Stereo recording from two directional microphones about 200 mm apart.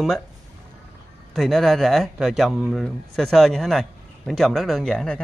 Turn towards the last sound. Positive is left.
turn(degrees=5)  # may be behind; listen again after turning